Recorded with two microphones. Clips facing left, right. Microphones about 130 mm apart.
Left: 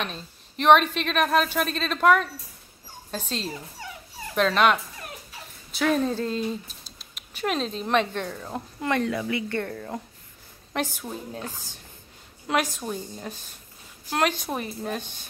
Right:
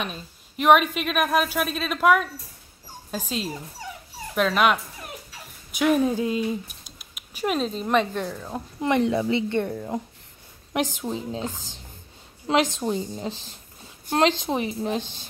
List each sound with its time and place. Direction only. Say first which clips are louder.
0.0 s a woman's voice: right 1 dB; 5° right (ahead or behind)
8.8 s a woman's voice: right 4 dB; 20° right (ahead or behind)
13.3 s speech: right 5 dB; 90° right
14.1 s a woman's voice: right 4 dB; 25° right (ahead or behind)